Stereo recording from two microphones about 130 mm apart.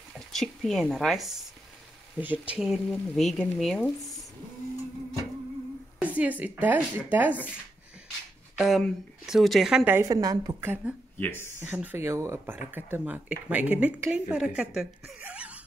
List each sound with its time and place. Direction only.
0.3 s speech: centre (ahead or behind)
5.9 s speech: 10° right (ahead or behind)
8.5 s speech: centre (ahead or behind)
10.0 s a woman's voice: 30° right (ahead or behind)
10.7 s speech: 10° right (ahead or behind)
11.1 s speech: 15° left (ahead or behind)
11.6 s speech: 15° right (ahead or behind)